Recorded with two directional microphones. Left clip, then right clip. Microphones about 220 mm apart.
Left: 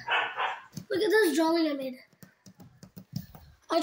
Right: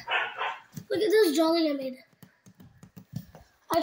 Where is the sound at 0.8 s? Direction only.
Centre (ahead or behind).